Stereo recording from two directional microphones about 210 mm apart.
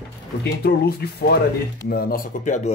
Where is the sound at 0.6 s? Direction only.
50° left (ahead or behind).